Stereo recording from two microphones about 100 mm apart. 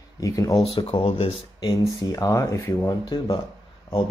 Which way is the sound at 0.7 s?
60° left (ahead or behind).